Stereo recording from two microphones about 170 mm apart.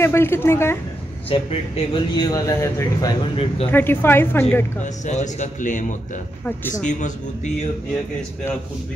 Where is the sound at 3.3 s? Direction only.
35° left (ahead or behind).